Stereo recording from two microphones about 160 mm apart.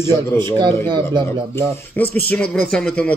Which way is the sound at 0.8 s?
25° right (ahead or behind).